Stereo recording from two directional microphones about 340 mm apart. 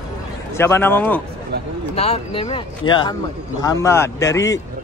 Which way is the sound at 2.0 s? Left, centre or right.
Centre.